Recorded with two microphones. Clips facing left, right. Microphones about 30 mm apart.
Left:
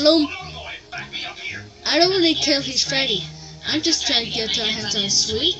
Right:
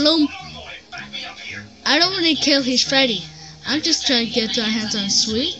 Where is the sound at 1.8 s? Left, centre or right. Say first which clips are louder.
Left 1 dB; right.